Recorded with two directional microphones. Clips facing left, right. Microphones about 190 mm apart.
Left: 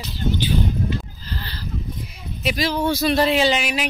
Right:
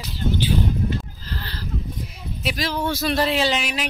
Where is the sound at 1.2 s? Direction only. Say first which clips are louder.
Even; centre (ahead or behind).